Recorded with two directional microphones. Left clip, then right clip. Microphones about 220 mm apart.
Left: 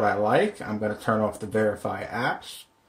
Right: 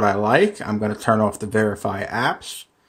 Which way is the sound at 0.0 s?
40° right (ahead or behind).